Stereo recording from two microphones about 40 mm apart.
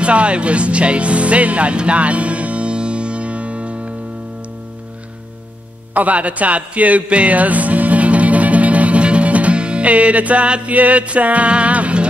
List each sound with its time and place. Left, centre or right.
0.0 s music: right
5.9 s music: right